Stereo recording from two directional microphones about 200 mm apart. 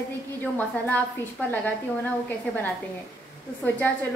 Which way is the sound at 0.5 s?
10° left (ahead or behind).